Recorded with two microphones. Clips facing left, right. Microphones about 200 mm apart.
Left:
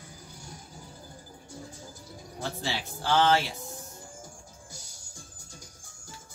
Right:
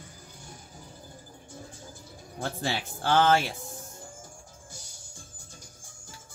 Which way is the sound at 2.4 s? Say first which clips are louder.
Right 2 dB; 50° right (ahead or behind).